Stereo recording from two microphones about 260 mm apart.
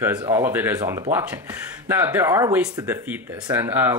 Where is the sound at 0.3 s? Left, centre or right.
Centre.